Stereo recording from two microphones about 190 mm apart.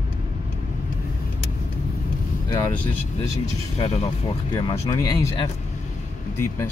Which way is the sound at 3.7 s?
35° left (ahead or behind).